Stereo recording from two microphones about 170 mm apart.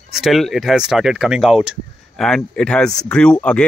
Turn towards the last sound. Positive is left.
turn(degrees=5)  # may be behind; listen again after turning